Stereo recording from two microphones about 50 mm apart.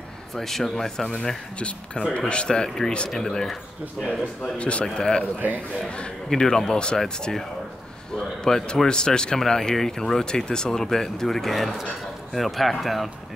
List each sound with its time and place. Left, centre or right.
0.3 s speech: centre
1.1 s speech: left
4.4 s speech: left
4.8 s speech: centre
6.3 s speech: centre
8.5 s speech: centre